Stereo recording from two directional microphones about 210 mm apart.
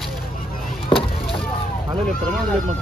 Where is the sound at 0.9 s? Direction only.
25° left (ahead or behind).